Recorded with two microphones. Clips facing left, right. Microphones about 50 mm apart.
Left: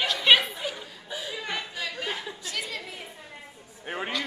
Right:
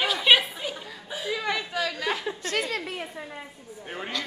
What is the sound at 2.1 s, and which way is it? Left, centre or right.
Chuckle, right.